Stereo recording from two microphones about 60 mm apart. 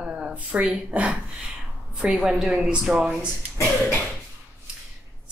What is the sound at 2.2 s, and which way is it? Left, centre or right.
Speech, centre.